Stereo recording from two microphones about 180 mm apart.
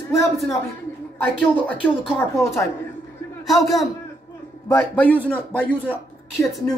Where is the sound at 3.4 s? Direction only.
Centre (ahead or behind).